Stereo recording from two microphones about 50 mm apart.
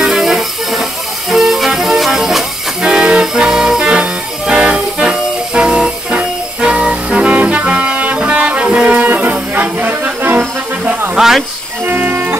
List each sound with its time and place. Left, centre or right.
0.0 s music: centre
8.9 s music: right
11.1 s hiss: centre
11.8 s music: right